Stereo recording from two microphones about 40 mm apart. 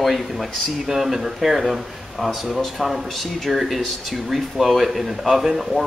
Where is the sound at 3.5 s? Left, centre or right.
Centre.